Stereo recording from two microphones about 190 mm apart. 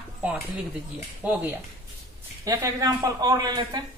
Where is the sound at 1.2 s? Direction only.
10° right (ahead or behind).